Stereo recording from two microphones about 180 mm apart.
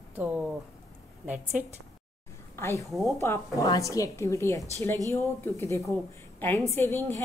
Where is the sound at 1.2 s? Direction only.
10° right (ahead or behind).